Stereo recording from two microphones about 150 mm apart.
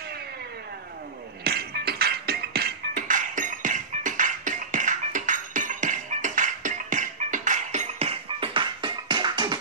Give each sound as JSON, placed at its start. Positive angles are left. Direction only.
{"t": 1.4, "sound": "music", "side_deg": -90}
{"t": 3.0, "sound": "music", "side_deg": -60}